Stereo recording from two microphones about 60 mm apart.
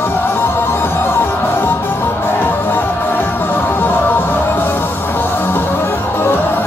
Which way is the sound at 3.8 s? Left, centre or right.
Left.